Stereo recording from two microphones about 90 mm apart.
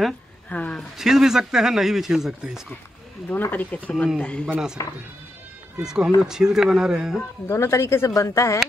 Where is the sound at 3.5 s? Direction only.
20° left (ahead or behind).